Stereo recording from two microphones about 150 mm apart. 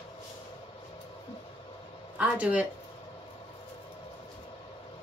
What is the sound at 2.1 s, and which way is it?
Speech, 10° right (ahead or behind).